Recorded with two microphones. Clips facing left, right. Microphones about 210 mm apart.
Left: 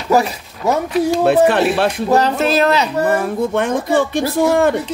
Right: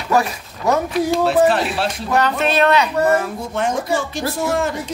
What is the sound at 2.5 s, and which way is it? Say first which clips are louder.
Speech: left 1 dB; 35° left (ahead or behind).